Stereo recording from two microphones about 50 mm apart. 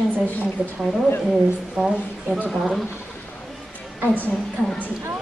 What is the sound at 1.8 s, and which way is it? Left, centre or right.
Speech, centre.